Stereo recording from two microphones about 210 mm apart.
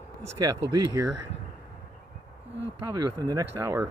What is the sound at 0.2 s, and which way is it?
Speech, 15° right (ahead or behind).